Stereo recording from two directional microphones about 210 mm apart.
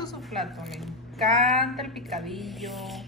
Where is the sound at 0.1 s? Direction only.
Centre (ahead or behind).